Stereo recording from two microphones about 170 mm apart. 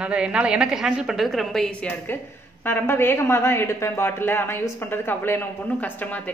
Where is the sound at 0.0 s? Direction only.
5° right (ahead or behind).